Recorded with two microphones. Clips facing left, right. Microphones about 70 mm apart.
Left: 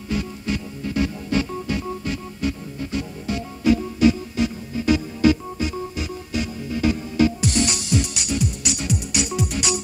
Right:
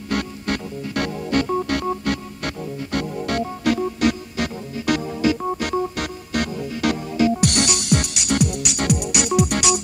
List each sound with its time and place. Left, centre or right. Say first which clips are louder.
0.1 s music: right 2 dB; right